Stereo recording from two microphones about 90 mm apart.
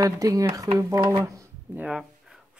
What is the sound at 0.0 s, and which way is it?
Speech, 40° right (ahead or behind).